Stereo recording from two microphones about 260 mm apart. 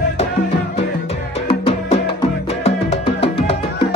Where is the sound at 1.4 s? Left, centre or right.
Left.